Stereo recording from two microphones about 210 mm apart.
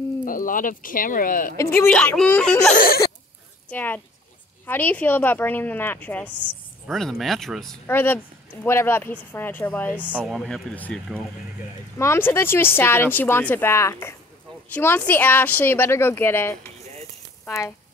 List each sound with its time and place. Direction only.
0.2 s speech: 40° left (ahead or behind)
1.6 s a woman's voice: 10° left (ahead or behind)
2.7 s a sound: 45° left (ahead or behind)
3.7 s a woman's voice: 10° left (ahead or behind)